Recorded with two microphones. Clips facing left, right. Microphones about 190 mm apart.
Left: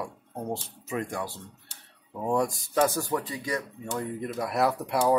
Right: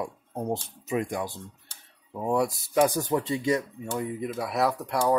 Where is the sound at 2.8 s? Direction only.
15° right (ahead or behind).